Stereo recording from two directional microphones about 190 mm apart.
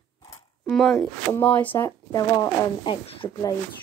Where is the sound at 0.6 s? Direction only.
Centre (ahead or behind); by 3.5 s 25° left (ahead or behind).